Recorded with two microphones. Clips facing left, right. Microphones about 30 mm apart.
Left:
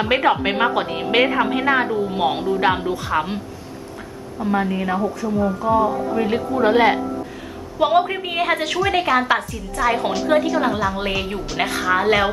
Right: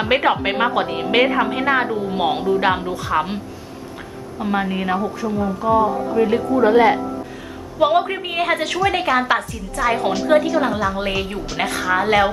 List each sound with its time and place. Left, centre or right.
0.0 s a woman's voice: centre
4.4 s a woman's voice: right
6.1 s a woman's voice: centre
7.8 s a woman's voice: centre